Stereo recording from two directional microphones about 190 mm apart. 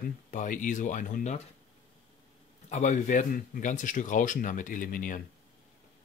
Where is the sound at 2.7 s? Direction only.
40° left (ahead or behind).